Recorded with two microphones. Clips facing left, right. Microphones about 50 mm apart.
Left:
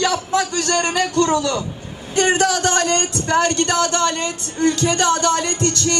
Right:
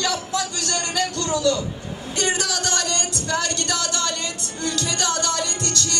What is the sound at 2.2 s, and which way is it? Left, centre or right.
Speech, left.